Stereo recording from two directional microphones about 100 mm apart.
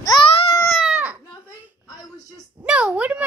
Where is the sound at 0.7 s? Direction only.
Centre (ahead or behind).